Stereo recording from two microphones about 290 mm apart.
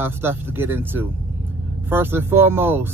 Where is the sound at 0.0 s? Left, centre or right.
Centre.